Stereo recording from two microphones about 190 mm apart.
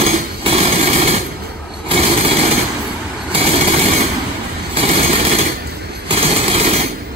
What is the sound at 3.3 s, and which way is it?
Vehicle, 30° right (ahead or behind).